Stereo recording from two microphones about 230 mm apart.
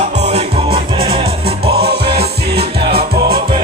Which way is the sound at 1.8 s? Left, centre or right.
Right.